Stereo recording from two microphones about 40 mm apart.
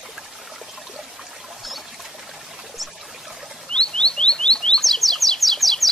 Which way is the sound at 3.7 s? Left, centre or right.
Left.